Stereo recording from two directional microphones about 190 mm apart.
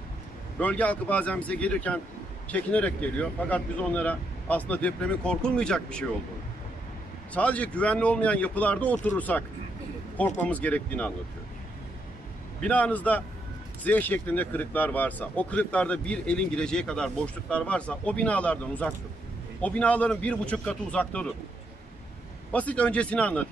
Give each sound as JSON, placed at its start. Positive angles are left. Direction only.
{"t": 0.6, "sound": "speech", "side_deg": 10}
{"t": 7.3, "sound": "speech", "side_deg": 5}
{"t": 12.6, "sound": "speech", "side_deg": 5}
{"t": 22.5, "sound": "speech", "side_deg": 5}